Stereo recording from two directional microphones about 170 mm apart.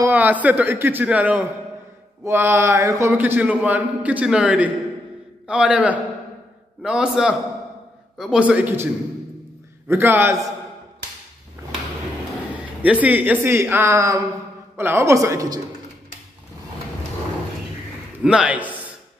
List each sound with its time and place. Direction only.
0.0 s a man's voice: 10° right (ahead or behind)
9.8 s a man's voice: 15° right (ahead or behind)
12.8 s a man's voice: 10° right (ahead or behind)
18.2 s a man's voice: 5° right (ahead or behind)